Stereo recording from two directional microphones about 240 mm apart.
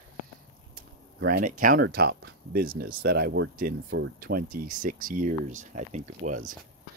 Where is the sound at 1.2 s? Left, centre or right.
Right.